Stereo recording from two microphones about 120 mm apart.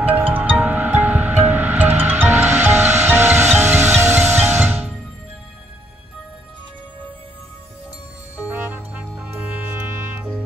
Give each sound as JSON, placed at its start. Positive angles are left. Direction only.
{"t": 0.3, "sound": "music", "side_deg": -15}
{"t": 8.4, "sound": "music", "side_deg": -15}